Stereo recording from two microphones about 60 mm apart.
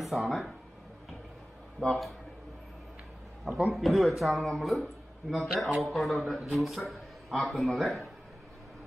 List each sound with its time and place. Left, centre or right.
0.0 s a man's voice: centre
1.8 s a man's voice: centre
3.7 s a man's voice: centre